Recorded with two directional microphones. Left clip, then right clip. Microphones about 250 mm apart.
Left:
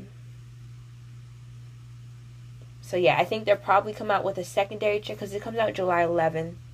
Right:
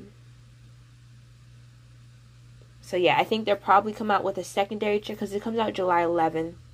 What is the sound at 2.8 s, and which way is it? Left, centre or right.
A woman's voice, right.